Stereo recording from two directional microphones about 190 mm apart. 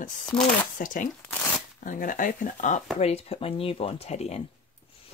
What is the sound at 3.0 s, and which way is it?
Speech, 30° left (ahead or behind).